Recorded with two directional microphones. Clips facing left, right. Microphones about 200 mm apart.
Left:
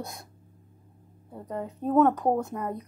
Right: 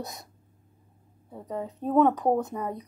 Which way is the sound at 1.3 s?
Centre (ahead or behind).